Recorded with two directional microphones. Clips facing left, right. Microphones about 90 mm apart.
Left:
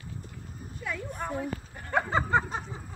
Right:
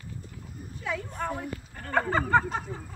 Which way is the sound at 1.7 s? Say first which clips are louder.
Right 1 dB; 15° left (ahead or behind).